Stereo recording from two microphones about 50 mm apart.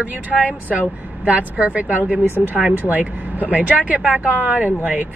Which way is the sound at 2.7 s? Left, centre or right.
Right.